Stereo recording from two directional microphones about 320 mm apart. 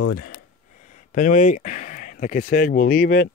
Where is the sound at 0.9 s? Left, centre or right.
Left.